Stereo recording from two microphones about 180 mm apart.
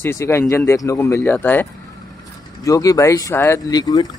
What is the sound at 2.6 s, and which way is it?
Speech, 20° left (ahead or behind).